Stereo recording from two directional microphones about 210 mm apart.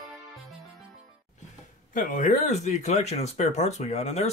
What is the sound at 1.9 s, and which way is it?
Speech, 35° left (ahead or behind).